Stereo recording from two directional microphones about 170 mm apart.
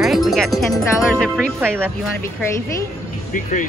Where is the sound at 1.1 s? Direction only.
Centre (ahead or behind).